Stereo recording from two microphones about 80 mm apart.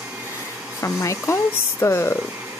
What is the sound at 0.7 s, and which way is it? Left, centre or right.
Speech, left.